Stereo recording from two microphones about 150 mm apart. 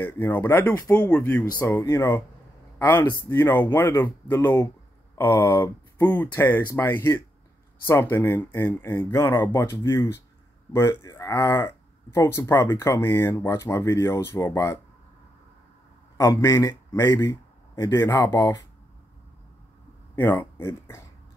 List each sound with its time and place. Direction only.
0.0 s speech: 15° left (ahead or behind)
16.2 s a man's voice: 20° left (ahead or behind)
20.2 s speech: 15° left (ahead or behind)